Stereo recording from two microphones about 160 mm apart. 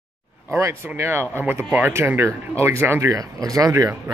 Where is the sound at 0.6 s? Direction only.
15° right (ahead or behind).